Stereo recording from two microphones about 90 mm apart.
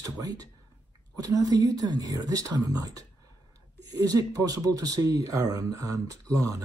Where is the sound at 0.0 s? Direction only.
40° right (ahead or behind).